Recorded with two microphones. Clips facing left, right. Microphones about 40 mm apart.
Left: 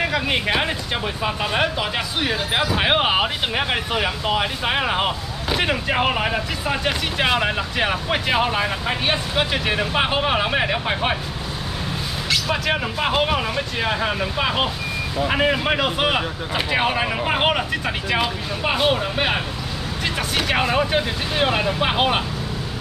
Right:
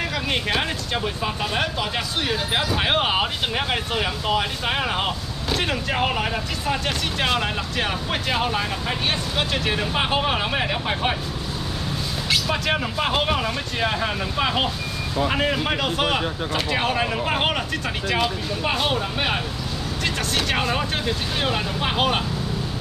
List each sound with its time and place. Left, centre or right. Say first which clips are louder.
0.0 s speech: left 4 dB; centre
12.4 s speech: left 1 dB; centre